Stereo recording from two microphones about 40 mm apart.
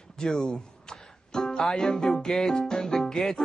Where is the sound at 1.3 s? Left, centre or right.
Centre.